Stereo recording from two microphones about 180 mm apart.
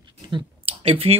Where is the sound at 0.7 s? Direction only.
30° right (ahead or behind).